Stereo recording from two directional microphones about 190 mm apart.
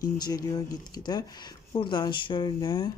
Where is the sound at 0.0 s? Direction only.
20° left (ahead or behind).